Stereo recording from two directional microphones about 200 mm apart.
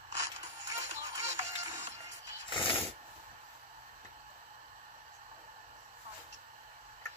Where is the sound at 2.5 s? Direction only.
25° left (ahead or behind).